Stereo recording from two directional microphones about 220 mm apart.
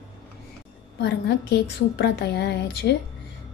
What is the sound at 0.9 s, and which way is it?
A woman's voice, 50° left (ahead or behind).